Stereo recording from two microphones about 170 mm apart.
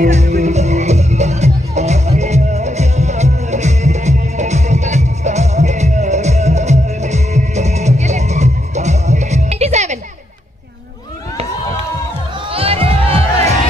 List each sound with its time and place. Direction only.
0.0 s music: 45° right (ahead or behind)
12.4 s music: 35° right (ahead or behind)